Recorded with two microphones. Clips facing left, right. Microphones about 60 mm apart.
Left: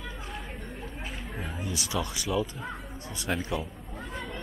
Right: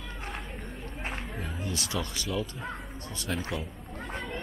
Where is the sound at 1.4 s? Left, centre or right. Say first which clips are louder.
Left 3 dB; centre.